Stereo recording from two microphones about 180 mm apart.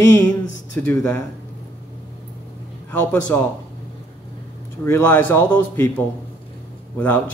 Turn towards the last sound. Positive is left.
turn(degrees=10)  # may be behind; listen again after turning